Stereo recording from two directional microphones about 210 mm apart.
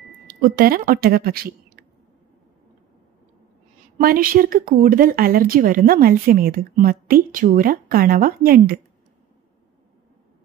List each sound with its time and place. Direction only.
0.3 s speech: 45° right (ahead or behind)
4.0 s speech: 45° right (ahead or behind)